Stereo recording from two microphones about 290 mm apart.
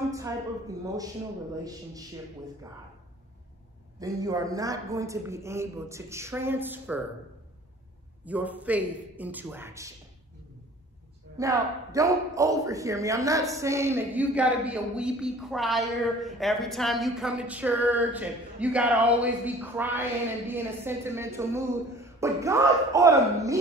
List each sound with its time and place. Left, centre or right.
0.1 s speech: centre
4.0 s speech: centre
8.3 s a man's voice: centre
11.3 s speech: centre